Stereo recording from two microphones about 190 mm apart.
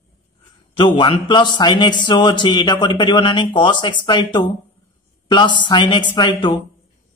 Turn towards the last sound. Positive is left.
turn(degrees=25)  # may be behind; listen again after turning